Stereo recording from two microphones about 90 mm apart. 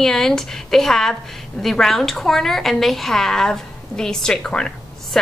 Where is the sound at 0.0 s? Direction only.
5° left (ahead or behind).